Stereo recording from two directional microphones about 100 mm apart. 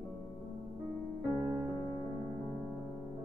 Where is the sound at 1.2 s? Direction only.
Centre (ahead or behind).